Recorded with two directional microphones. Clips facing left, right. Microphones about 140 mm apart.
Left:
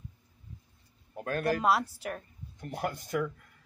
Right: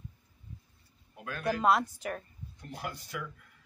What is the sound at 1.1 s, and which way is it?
Speech, 50° left (ahead or behind).